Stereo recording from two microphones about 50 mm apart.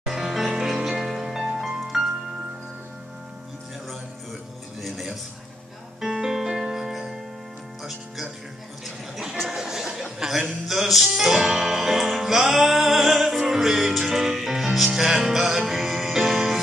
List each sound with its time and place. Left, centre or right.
0.0 s music: centre
4.8 s a sound: centre
5.9 s music: centre
9.5 s a sound: centre
10.1 s chuckle: centre
10.7 s music: centre